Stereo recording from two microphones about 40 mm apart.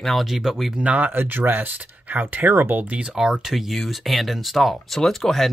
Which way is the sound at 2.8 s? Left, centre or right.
Right.